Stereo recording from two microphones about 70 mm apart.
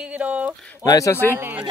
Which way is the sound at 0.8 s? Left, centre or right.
Left.